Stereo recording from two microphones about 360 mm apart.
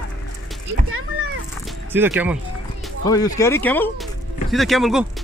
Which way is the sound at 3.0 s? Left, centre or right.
Centre.